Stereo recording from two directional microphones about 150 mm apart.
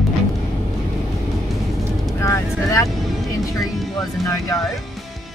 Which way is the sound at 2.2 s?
20° left (ahead or behind).